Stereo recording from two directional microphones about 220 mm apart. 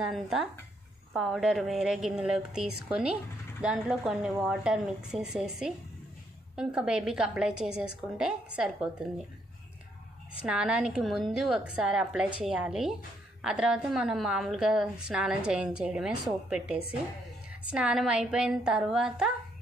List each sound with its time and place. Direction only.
0.1 s a woman's voice: centre (ahead or behind)
10.4 s a woman's voice: 5° right (ahead or behind)